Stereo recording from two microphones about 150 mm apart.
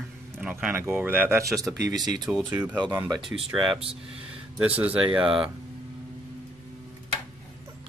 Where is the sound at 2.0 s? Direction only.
25° right (ahead or behind).